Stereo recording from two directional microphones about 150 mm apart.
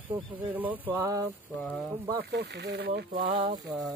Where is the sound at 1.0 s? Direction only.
25° right (ahead or behind).